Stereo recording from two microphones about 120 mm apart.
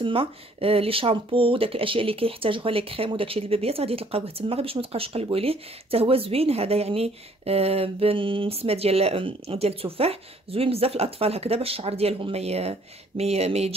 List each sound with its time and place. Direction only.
0.0 s speech: 50° right (ahead or behind)